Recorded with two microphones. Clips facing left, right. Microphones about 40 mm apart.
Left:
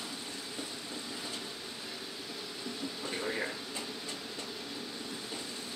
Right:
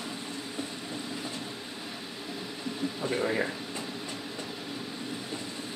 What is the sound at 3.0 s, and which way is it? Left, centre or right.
Speech, right.